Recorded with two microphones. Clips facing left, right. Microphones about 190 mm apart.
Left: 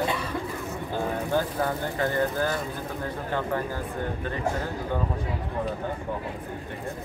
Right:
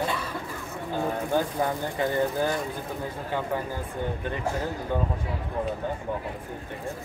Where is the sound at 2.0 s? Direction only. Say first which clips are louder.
Right 1 dB; 20° right (ahead or behind).